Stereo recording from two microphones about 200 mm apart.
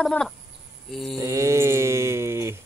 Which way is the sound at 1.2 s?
15° right (ahead or behind).